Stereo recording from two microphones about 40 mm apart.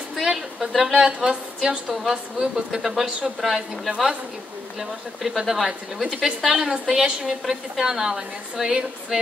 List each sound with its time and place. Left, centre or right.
0.1 s a woman's voice: centre
0.9 s a woman's voice: centre
6.0 s a woman's voice: centre